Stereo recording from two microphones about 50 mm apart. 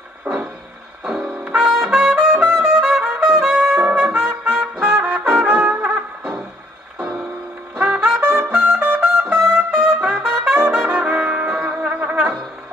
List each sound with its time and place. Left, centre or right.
0.3 s music: right
1.0 s trumpet: centre
5.1 s brass instrument: right
7.0 s music: centre
8.2 s trumpet: right
10.9 s brass instrument: right
11.9 s music: right